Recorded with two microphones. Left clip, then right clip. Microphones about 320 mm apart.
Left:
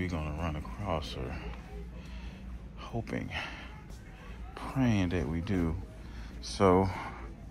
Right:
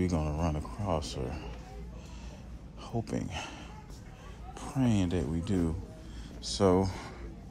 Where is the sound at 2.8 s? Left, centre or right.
Centre.